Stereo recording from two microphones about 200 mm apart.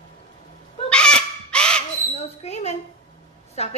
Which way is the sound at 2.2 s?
30° left (ahead or behind).